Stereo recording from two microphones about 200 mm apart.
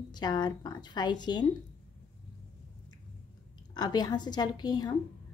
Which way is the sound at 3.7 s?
20° left (ahead or behind).